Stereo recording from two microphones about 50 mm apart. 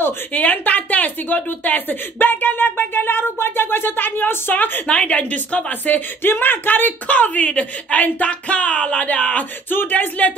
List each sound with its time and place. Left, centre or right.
0.3 s a woman's voice: left
4.8 s a woman's voice: left
9.7 s a woman's voice: left